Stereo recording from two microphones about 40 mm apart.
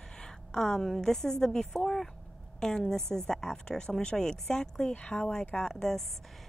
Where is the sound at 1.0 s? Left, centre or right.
Centre.